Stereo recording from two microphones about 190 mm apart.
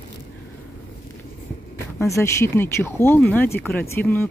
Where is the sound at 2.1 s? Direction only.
15° left (ahead or behind).